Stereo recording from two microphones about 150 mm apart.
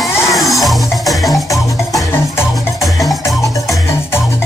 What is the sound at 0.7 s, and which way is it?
Music, centre (ahead or behind).